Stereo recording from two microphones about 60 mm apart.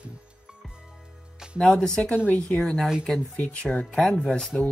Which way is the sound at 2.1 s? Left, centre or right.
Left.